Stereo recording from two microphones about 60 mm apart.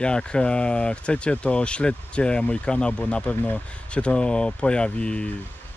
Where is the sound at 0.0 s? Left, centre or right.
Centre.